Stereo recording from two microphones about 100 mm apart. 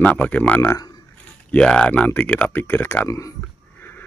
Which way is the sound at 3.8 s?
20° left (ahead or behind).